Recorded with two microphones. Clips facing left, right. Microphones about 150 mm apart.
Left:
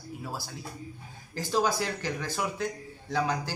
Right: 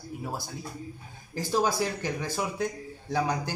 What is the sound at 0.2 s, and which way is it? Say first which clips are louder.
Speech: right 3 dB; 20° right (ahead or behind).